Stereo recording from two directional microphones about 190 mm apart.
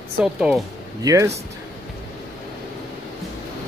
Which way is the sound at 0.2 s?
5° right (ahead or behind).